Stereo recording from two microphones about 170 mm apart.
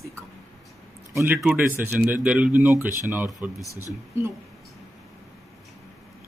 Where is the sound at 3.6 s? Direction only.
20° left (ahead or behind).